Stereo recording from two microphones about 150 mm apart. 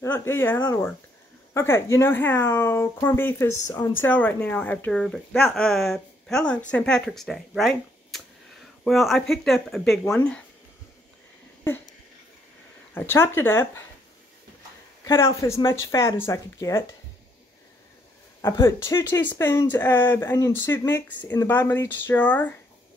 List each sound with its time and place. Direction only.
0.0 s a woman's voice: 15° left (ahead or behind)
12.9 s speech: 15° left (ahead or behind)
15.4 s speech: 20° left (ahead or behind)
18.4 s speech: 20° left (ahead or behind)